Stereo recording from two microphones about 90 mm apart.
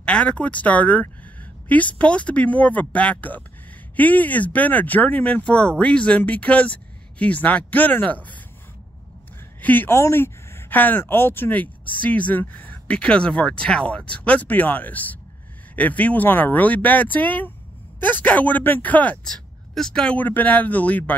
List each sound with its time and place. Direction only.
0.0 s speech: 10° left (ahead or behind)
9.6 s speech: 20° left (ahead or behind)
19.2 s speech: 5° left (ahead or behind)